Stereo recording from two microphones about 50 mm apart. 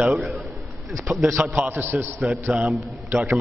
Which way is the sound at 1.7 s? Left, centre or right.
Right.